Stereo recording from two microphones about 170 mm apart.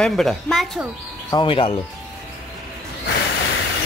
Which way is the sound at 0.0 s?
Centre (ahead or behind).